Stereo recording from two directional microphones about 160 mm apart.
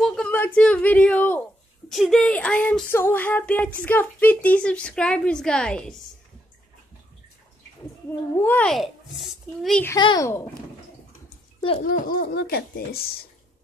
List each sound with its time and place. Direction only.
0.0 s a sound: 5° left (ahead or behind)
1.9 s child singing: centre (ahead or behind)
8.4 s a child's voice: 10° left (ahead or behind)
9.9 s a child's voice: 25° left (ahead or behind)
11.8 s speech: 60° left (ahead or behind)